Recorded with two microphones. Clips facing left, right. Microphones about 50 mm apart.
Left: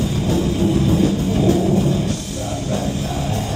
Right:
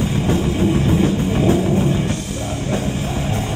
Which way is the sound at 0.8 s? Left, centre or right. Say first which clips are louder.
Even; right.